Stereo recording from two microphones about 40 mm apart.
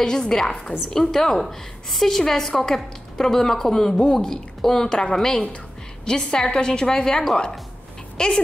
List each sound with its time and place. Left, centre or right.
0.0 s a woman's voice: centre